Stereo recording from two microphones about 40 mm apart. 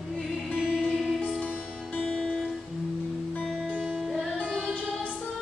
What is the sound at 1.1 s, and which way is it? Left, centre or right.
Music, left.